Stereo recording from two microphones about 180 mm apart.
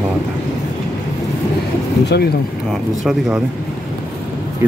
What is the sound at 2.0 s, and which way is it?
Speech, 65° left (ahead or behind).